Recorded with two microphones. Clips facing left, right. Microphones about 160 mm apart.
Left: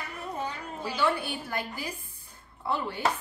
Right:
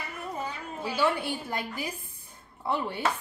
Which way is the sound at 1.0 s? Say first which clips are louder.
Even; 20° right (ahead or behind).